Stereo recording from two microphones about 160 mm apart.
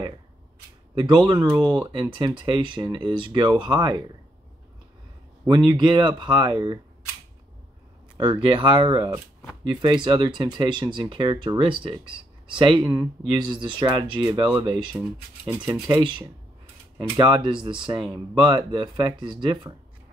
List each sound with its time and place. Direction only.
0.9 s speech: 30° right (ahead or behind)
5.5 s speech: 30° right (ahead or behind)
8.2 s speech: 30° right (ahead or behind)